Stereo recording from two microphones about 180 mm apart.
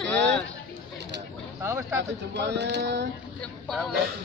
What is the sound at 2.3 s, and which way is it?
Speech, 70° right (ahead or behind).